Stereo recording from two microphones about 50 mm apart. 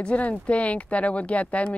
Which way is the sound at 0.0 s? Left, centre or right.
Left.